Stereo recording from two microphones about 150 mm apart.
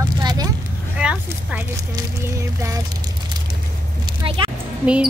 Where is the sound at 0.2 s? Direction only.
30° right (ahead or behind).